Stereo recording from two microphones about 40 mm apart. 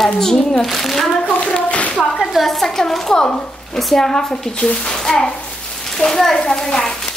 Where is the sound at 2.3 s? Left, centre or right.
Centre.